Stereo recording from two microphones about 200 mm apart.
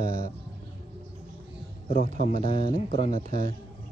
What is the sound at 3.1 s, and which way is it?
Speech, 40° right (ahead or behind).